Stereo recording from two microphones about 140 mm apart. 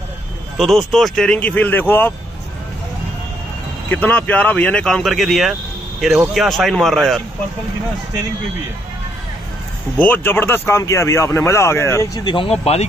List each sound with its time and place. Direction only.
0.6 s speech: centre (ahead or behind)
3.9 s speech: 10° left (ahead or behind)
9.9 s speech: 15° left (ahead or behind)
12.3 s speech: 40° left (ahead or behind)